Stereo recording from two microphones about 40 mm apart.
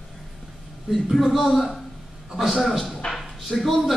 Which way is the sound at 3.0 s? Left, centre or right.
Left.